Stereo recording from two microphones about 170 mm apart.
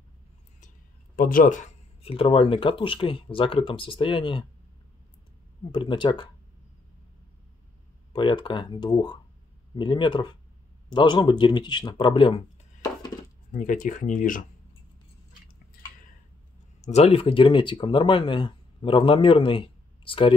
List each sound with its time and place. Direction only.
1.1 s speech: 55° left (ahead or behind); by 4.5 s 30° left (ahead or behind)
5.7 s speech: 30° left (ahead or behind)
8.1 s speech: 30° left (ahead or behind)
13.5 s speech: 50° left (ahead or behind)
16.8 s speech: 40° left (ahead or behind)